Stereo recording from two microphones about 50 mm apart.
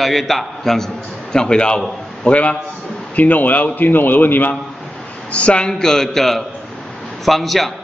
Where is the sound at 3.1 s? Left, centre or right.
Left.